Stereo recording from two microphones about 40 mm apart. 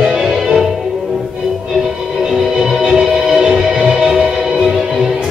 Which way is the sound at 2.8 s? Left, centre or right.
Centre.